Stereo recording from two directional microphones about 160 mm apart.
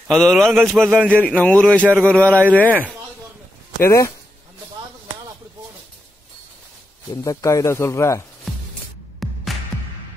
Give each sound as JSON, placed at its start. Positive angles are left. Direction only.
{"t": 0.1, "sound": "a man's voice", "side_deg": 5}
{"t": 0.8, "sound": "a man's voice", "side_deg": -10}
{"t": 1.2, "sound": "speech", "side_deg": 10}
{"t": 3.8, "sound": "speech", "side_deg": 20}
{"t": 7.2, "sound": "speech", "side_deg": 20}
{"t": 9.2, "sound": "music", "side_deg": 0}